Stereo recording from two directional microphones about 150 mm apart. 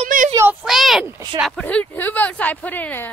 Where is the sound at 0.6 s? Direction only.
Centre (ahead or behind).